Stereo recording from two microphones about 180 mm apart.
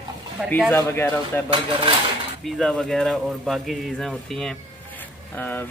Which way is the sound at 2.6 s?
Centre (ahead or behind).